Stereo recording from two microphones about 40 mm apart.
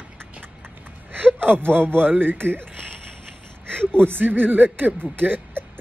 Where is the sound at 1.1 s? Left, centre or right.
Right.